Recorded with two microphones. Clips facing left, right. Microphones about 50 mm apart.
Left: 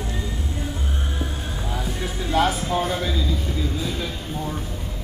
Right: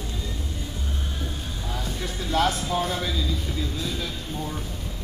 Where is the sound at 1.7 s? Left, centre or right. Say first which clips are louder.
Left 3 dB; centre.